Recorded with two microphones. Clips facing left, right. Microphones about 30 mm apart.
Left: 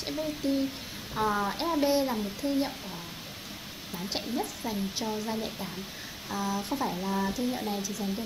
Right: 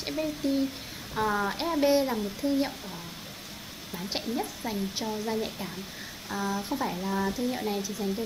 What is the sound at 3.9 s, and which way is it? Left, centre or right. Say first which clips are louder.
Speech: right 1 dB; centre.